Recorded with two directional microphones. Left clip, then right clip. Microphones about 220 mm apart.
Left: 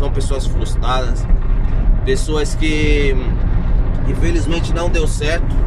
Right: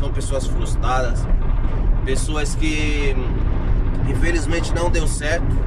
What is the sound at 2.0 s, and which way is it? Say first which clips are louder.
Speech: left 7 dB; 20° left (ahead or behind).